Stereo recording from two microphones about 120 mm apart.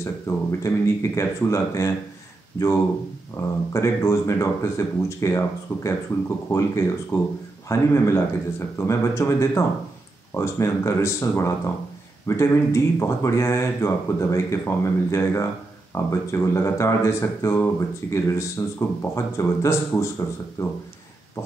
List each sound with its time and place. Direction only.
0.0 s speech: 25° left (ahead or behind)
3.3 s speech: 25° left (ahead or behind)